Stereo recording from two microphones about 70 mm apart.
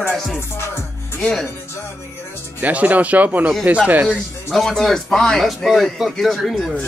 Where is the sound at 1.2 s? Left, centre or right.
Centre.